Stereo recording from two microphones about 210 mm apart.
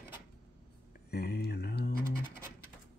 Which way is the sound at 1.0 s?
50° left (ahead or behind).